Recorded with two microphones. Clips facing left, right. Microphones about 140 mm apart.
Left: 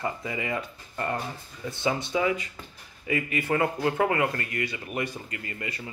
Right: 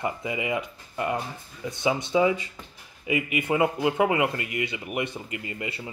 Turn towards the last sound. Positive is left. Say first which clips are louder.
# right 2 dB
turn(degrees=-20)  # may be behind; listen again after turning